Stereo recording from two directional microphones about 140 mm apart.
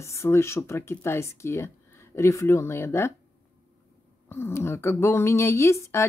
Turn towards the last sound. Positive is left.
turn(degrees=20)  # may be behind; listen again after turning